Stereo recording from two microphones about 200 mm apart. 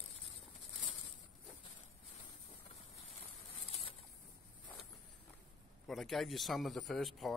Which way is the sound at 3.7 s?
30° left (ahead or behind).